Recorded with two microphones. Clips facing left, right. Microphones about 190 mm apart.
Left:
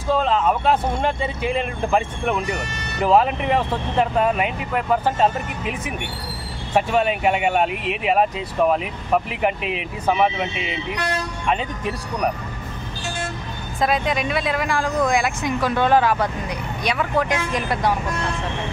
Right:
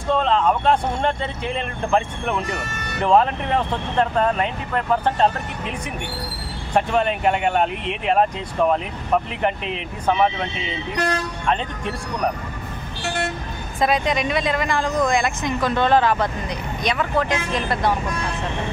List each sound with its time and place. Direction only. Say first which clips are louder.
0.1 s speech: even; 5° left (ahead or behind)
13.0 s vehicle: right 4 dB; 65° right (ahead or behind)
13.7 s speech: right 1 dB; centre (ahead or behind)